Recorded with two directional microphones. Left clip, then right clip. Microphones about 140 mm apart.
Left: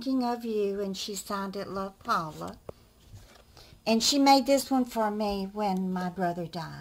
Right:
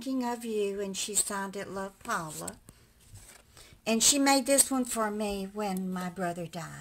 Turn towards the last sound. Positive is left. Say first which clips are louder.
# left 3 dB
turn(degrees=-10)  # may be behind; listen again after turning